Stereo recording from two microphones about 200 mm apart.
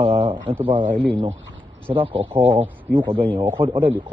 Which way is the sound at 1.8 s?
10° right (ahead or behind).